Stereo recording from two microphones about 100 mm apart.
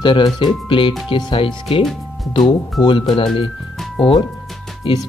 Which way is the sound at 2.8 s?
55° left (ahead or behind).